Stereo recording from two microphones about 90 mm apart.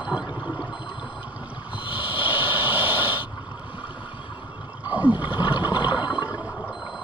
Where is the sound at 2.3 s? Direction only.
20° right (ahead or behind).